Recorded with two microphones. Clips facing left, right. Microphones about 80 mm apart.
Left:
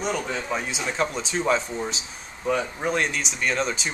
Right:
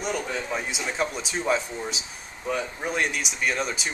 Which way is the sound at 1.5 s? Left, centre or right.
Left.